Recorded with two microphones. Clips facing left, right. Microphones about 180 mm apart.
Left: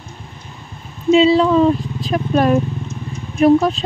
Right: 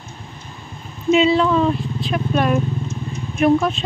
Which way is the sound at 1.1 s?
30° left (ahead or behind).